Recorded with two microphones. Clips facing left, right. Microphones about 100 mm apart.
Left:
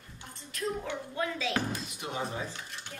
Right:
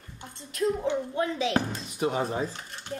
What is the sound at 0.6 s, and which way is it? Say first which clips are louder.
Speech: right 8 dB; 25° right (ahead or behind).